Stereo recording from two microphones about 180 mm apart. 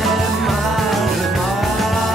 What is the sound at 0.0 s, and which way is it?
Music, centre (ahead or behind).